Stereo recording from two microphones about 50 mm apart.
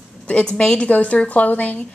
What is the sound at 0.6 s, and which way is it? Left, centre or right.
A woman's voice, left.